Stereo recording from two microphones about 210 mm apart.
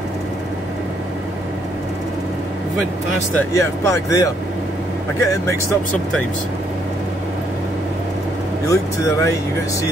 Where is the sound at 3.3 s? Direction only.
15° left (ahead or behind).